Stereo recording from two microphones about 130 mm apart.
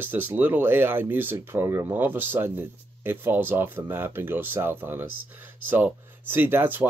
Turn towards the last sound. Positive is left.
turn(degrees=-15)  # may be behind; listen again after turning